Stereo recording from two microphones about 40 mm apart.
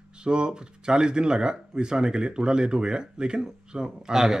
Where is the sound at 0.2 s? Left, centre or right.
Right.